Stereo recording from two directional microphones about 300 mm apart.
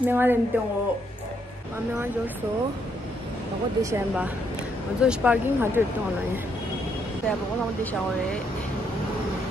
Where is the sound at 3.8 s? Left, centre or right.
Centre.